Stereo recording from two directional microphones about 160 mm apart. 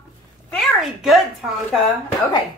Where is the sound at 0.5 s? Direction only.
Centre (ahead or behind).